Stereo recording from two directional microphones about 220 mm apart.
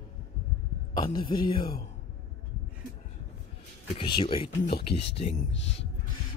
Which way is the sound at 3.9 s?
20° left (ahead or behind).